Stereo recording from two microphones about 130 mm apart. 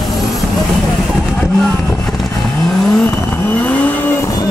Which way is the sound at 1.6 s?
5° left (ahead or behind).